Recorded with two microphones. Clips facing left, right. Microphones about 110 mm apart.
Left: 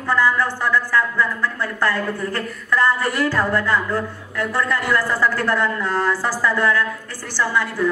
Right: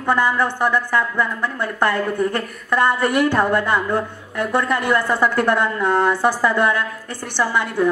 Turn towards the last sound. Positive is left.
turn(degrees=-20)  # may be behind; listen again after turning